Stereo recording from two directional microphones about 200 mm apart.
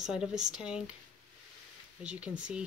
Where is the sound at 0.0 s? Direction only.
5° right (ahead or behind).